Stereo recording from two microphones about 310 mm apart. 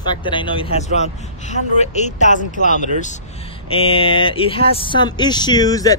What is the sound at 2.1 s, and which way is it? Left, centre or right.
Speech, left.